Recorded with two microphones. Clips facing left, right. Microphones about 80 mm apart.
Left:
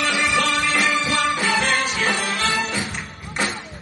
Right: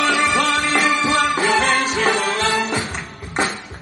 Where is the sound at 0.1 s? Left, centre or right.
Right.